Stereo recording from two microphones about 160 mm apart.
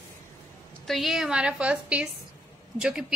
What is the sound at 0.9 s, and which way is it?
A woman's voice, centre (ahead or behind).